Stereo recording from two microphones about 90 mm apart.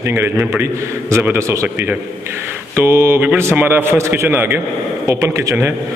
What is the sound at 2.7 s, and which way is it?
A man's voice, 25° right (ahead or behind).